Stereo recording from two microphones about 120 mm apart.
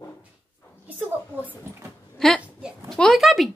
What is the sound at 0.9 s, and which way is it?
Speech, 15° right (ahead or behind).